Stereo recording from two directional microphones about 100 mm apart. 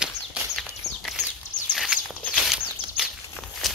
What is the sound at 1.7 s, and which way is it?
Walk, centre (ahead or behind).